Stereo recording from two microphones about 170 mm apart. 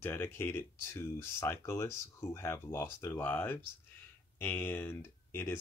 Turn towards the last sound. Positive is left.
turn(degrees=15)  # may be behind; listen again after turning